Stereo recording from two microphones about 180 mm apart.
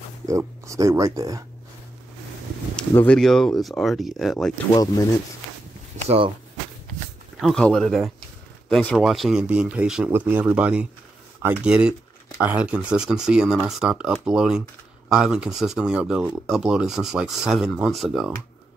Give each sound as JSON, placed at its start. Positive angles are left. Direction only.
{"t": 0.3, "sound": "speech", "side_deg": -15}
{"t": 2.9, "sound": "speech", "side_deg": 10}
{"t": 4.7, "sound": "speech", "side_deg": 20}
{"t": 6.0, "sound": "speech", "side_deg": -30}
{"t": 7.3, "sound": "speech", "side_deg": 0}